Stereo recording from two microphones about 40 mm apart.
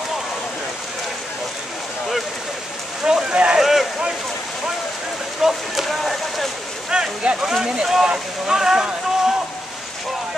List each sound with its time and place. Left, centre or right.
3.1 s rain on surface: centre
3.5 s boat: centre
5.4 s a sound: centre
6.9 s speech: centre